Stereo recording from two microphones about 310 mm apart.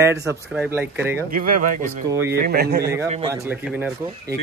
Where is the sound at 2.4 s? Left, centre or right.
Right.